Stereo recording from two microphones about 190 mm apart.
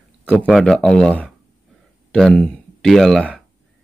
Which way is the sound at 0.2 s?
5° left (ahead or behind).